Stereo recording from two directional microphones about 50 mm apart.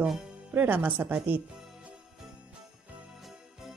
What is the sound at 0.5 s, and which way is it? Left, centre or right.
Speech, right.